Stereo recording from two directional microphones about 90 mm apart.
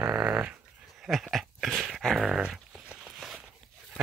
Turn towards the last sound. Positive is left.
turn(degrees=0)  # may be behind; listen again after turning